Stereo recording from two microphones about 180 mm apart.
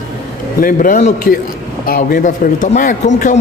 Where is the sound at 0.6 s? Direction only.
50° left (ahead or behind).